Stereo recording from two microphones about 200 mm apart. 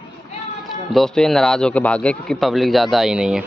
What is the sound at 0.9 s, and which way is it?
A man's voice, centre (ahead or behind).